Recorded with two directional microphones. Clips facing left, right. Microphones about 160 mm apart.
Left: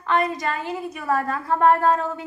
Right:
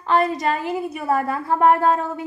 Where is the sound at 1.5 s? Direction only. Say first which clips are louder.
Right 1 dB; 15° right (ahead or behind).